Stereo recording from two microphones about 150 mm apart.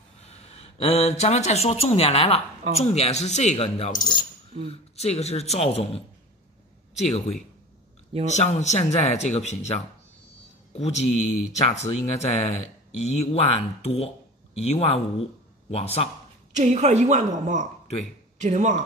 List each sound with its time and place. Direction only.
0.5 s speech: 40° left (ahead or behind)
4.0 s speech: 30° left (ahead or behind)
4.6 s speech: 45° left (ahead or behind)
8.1 s speech: 50° right (ahead or behind)
8.4 s a man's voice: 50° left (ahead or behind)
16.5 s a woman's voice: 50° right (ahead or behind)